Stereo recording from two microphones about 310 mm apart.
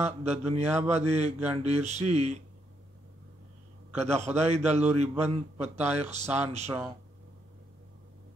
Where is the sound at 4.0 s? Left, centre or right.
Right.